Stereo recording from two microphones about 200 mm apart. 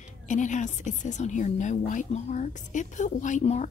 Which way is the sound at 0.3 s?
35° left (ahead or behind).